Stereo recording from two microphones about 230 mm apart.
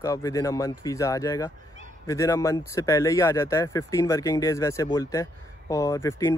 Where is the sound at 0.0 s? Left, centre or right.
Centre.